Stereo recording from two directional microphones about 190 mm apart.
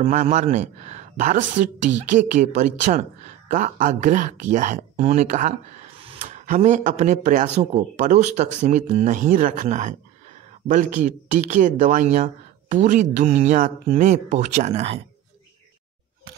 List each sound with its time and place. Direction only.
0.0 s speech: 40° right (ahead or behind)